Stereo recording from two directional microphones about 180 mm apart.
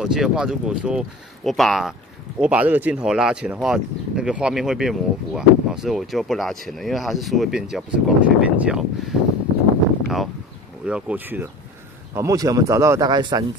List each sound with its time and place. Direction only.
0.0 s speech: 5° right (ahead or behind)
10.0 s a sound: centre (ahead or behind)
10.9 s a man's voice: 5° right (ahead or behind); by 13.5 s 25° right (ahead or behind)